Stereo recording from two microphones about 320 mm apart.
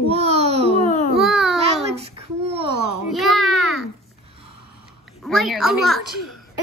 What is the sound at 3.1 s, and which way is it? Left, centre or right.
Speech, centre.